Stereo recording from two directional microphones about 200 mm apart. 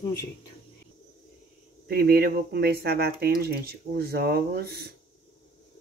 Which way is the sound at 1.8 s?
50° right (ahead or behind).